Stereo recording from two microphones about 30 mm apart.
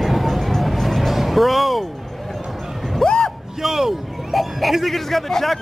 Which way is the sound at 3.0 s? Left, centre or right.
Centre.